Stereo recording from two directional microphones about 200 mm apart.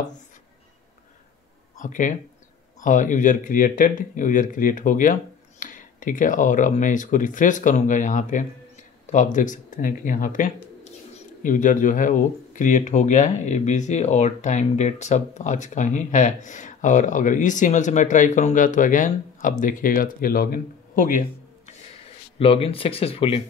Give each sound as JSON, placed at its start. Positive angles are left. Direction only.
{"t": 1.8, "sound": "speech", "side_deg": 40}